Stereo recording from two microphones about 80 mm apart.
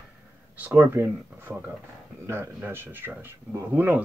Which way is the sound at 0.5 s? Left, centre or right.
Right.